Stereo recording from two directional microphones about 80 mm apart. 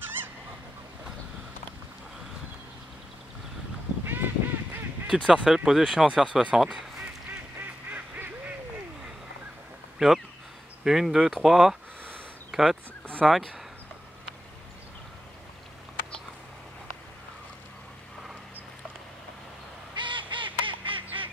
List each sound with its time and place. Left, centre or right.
4.0 s a sound: right
5.1 s speech: centre
9.9 s speech: centre
12.4 s a sound: centre
13.2 s speech: centre
20.0 s bird: right